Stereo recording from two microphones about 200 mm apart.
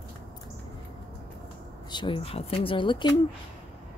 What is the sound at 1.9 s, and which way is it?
Speech, 25° left (ahead or behind).